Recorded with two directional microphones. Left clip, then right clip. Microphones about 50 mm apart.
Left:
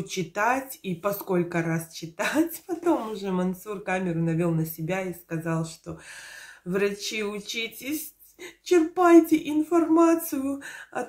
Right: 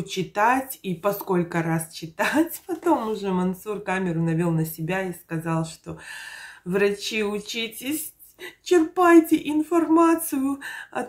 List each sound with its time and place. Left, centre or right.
0.0 s speech: right